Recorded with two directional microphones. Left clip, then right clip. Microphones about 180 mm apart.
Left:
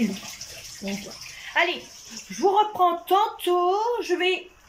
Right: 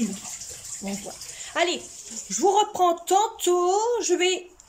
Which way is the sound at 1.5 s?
20° right (ahead or behind).